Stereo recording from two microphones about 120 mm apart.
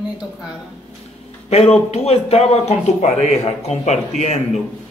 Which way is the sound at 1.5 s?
60° left (ahead or behind).